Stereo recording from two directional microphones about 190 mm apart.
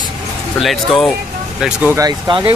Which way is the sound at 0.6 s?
Centre (ahead or behind).